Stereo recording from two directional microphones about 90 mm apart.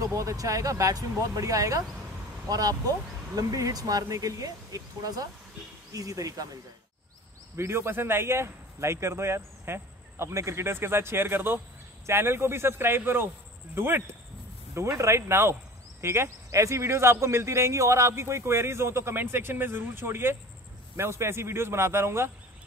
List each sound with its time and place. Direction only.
0.0 s speech: 35° right (ahead or behind)
7.5 s speech: 30° right (ahead or behind)